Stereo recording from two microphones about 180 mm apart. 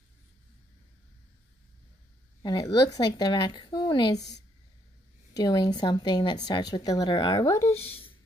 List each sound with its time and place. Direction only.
2.4 s speech: 20° left (ahead or behind)
5.3 s speech: 20° left (ahead or behind)